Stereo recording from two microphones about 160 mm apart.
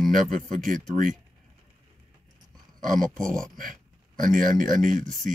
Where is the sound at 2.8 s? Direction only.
55° right (ahead or behind).